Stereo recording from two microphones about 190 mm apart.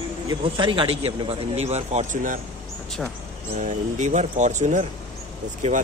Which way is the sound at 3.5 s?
40° right (ahead or behind).